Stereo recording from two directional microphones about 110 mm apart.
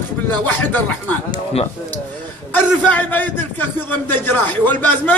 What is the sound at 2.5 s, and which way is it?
A man's voice, 15° left (ahead or behind).